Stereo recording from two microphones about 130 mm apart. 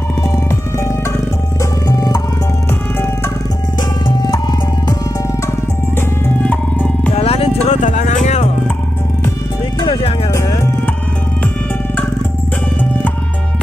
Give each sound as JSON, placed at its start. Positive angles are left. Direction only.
{"t": 1.9, "sound": "music", "side_deg": 30}
{"t": 7.2, "sound": "music", "side_deg": 50}
{"t": 7.6, "sound": "music", "side_deg": 70}